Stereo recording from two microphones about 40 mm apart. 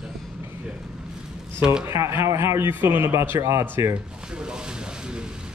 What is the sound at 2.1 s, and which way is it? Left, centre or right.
A man's voice, right.